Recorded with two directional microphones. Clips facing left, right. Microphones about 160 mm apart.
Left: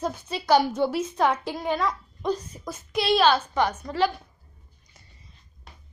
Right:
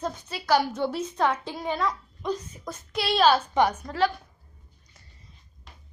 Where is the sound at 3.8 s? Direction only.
5° left (ahead or behind).